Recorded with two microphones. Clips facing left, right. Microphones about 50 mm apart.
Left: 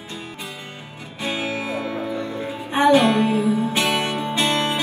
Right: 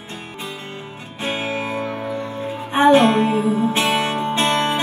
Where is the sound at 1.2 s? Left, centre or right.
Right.